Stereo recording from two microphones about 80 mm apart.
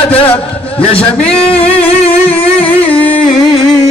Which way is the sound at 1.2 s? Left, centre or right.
Centre.